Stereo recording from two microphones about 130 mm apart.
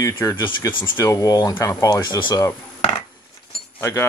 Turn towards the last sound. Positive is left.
turn(degrees=20)  # may be behind; listen again after turning